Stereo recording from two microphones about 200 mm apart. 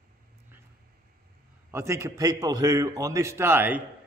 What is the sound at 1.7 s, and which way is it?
A man's voice, 15° right (ahead or behind).